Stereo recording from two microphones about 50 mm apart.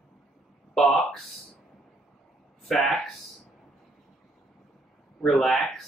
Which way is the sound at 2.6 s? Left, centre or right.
Centre.